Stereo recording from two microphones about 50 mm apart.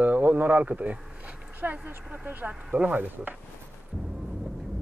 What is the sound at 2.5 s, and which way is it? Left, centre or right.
Speech, centre.